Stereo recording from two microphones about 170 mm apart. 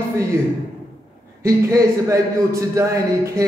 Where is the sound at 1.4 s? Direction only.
15° right (ahead or behind).